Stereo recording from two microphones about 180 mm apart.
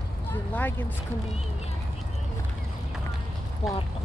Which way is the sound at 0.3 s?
10° left (ahead or behind).